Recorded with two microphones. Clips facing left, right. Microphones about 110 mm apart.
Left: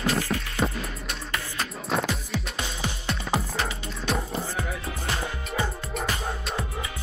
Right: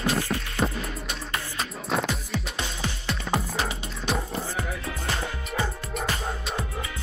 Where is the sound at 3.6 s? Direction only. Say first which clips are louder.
Even; 20° right (ahead or behind).